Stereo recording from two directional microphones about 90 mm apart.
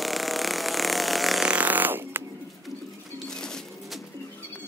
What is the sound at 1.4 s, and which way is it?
Fart, 20° right (ahead or behind).